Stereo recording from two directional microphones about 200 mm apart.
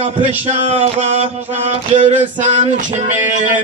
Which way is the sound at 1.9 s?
35° right (ahead or behind).